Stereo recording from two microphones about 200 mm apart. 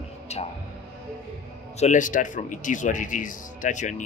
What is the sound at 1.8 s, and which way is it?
A man's voice, 40° left (ahead or behind).